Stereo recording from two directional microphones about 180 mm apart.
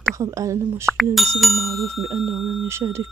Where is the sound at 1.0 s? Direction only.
Centre (ahead or behind).